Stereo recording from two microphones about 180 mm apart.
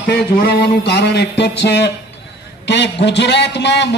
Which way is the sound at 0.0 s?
55° left (ahead or behind).